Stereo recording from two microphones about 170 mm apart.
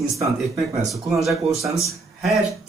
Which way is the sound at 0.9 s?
Centre (ahead or behind).